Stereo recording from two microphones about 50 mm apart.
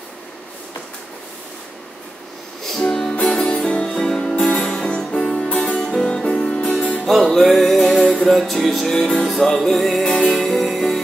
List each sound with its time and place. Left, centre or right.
2.6 s music: centre
3.2 s music: left
3.9 s music: centre
5.5 s music: left
5.8 s music: centre
6.3 s music: left
7.1 s music: centre